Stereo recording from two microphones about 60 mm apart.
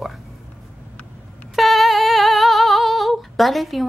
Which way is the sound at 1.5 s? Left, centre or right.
Centre.